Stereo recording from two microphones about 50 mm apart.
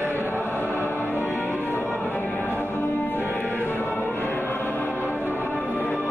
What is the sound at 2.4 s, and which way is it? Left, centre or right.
Music, left.